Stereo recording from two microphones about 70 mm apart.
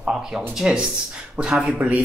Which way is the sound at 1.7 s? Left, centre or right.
Right.